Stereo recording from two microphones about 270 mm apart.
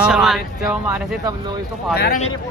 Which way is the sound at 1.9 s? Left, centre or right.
Left.